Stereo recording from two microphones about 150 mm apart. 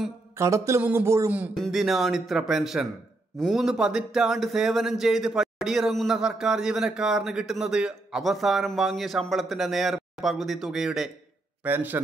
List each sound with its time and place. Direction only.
0.4 s speech: 20° right (ahead or behind)
1.6 s speech: centre (ahead or behind)
11.6 s speech: 15° right (ahead or behind)